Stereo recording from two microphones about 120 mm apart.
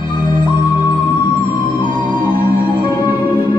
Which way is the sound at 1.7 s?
40° left (ahead or behind).